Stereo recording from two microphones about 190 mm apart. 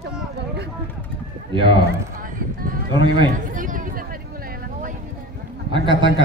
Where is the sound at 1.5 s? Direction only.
25° right (ahead or behind).